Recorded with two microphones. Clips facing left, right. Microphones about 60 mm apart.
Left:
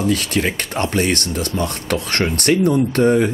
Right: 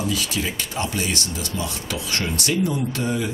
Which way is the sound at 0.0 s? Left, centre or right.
Left.